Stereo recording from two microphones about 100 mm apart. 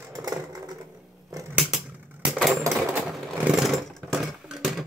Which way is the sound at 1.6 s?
5° right (ahead or behind).